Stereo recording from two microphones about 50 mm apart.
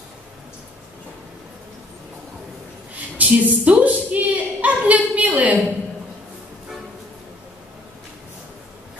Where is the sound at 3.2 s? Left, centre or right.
Right.